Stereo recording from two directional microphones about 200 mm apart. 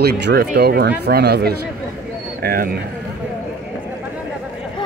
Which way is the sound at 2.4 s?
50° right (ahead or behind).